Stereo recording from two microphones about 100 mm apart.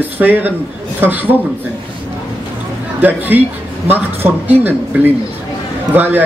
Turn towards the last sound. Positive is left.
turn(degrees=-20)  # may be behind; listen again after turning